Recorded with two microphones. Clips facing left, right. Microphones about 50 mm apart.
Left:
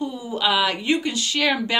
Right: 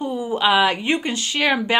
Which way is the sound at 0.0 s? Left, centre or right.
Right.